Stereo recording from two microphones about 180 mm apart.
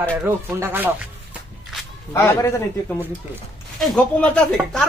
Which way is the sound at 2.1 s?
15° left (ahead or behind).